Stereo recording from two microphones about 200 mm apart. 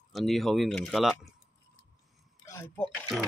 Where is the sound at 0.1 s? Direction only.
Centre (ahead or behind).